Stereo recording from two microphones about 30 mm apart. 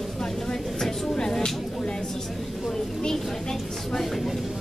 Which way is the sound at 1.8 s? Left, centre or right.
Left.